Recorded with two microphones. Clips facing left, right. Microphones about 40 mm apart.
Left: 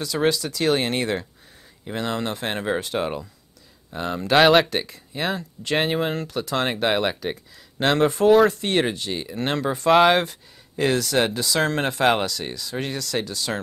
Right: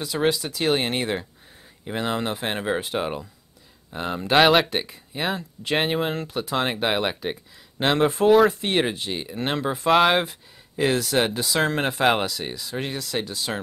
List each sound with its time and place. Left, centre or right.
0.1 s speech: centre
0.6 s speech: centre
6.2 s speech: centre
6.5 s speech: centre